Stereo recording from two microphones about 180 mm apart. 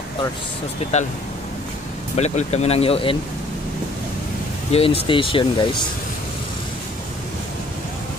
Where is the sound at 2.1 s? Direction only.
35° left (ahead or behind).